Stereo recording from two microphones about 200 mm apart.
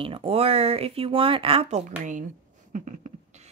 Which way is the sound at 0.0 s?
30° right (ahead or behind).